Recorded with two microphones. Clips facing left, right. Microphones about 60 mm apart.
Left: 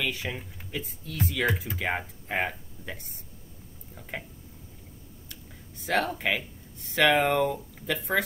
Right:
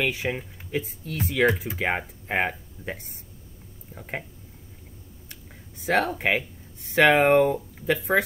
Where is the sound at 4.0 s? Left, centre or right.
Right.